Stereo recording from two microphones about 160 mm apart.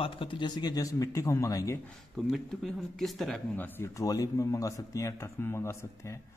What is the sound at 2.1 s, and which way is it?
Speech, centre (ahead or behind).